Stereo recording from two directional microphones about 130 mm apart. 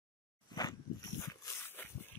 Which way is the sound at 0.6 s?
25° left (ahead or behind).